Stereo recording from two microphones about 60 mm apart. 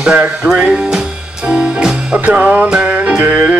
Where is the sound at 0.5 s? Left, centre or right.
Centre.